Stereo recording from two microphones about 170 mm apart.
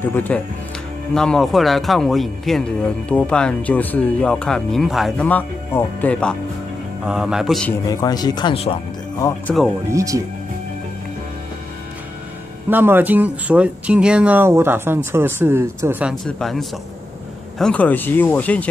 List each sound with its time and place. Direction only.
0.0 s speech: 10° left (ahead or behind)
7.1 s speech: 5° right (ahead or behind)
7.9 s speech: 20° left (ahead or behind)
9.8 s speech: 20° right (ahead or behind)
12.6 s speech: 10° right (ahead or behind)
16.3 s speech: 5° left (ahead or behind)